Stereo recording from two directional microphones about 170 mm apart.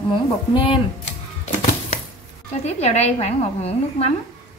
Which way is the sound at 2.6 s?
40° left (ahead or behind).